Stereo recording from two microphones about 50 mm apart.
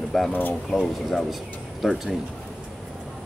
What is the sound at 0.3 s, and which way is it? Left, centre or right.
Speech, left.